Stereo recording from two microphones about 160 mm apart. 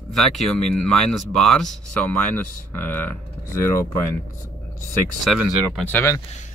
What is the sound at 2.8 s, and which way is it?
Speech, 10° left (ahead or behind).